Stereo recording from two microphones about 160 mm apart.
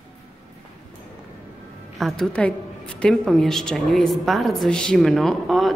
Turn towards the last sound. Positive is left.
turn(degrees=0)  # may be behind; listen again after turning